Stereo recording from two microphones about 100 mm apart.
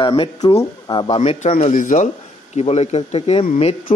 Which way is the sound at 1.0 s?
75° left (ahead or behind).